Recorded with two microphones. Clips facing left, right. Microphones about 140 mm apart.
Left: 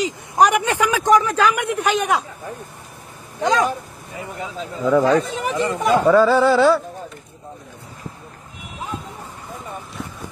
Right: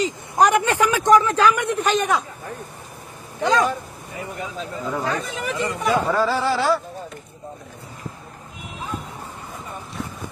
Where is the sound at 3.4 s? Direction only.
15° left (ahead or behind).